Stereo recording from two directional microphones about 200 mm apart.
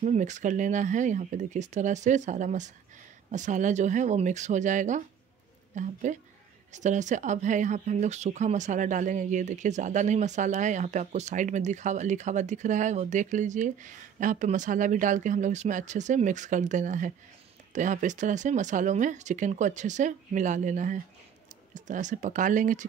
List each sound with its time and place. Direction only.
0.0 s speech: 35° right (ahead or behind)